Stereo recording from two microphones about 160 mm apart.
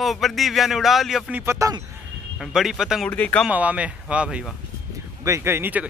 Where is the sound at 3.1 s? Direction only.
10° left (ahead or behind).